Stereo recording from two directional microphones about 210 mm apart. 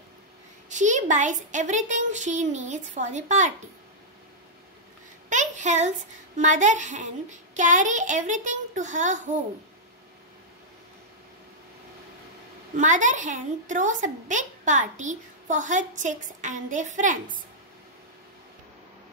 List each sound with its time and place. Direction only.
0.7 s a woman's voice: 35° right (ahead or behind)
5.3 s a woman's voice: 35° right (ahead or behind)
12.7 s a woman's voice: 35° right (ahead or behind)